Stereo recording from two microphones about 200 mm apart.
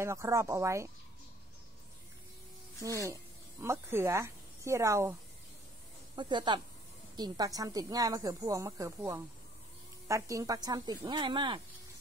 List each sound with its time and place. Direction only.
0.0 s a woman's voice: 15° right (ahead or behind)
2.8 s a woman's voice: 15° right (ahead or behind)
6.1 s a woman's voice: 20° right (ahead or behind)